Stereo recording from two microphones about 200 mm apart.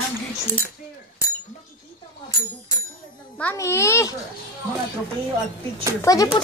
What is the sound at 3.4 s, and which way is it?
Speech, 10° left (ahead or behind).